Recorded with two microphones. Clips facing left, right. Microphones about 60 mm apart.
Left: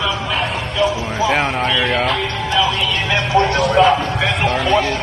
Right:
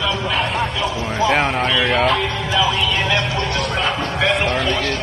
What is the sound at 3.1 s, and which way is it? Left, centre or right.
Speech, centre.